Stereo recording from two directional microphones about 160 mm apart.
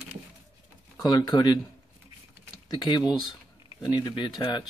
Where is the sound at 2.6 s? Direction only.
25° left (ahead or behind).